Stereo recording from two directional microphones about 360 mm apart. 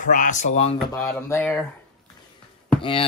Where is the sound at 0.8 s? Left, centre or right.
Centre.